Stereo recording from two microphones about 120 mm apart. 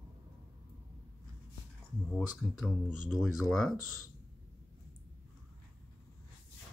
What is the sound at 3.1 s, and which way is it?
Speech, 5° right (ahead or behind).